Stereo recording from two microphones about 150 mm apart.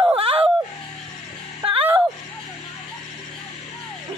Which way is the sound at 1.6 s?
40° right (ahead or behind).